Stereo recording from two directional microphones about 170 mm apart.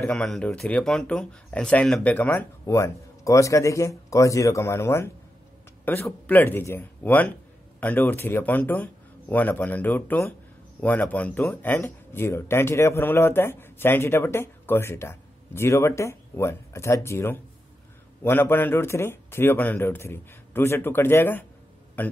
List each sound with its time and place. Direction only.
0.0 s speech: 5° left (ahead or behind)